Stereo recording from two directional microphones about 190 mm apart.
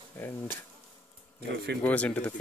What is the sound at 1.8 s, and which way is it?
Speech, 5° left (ahead or behind).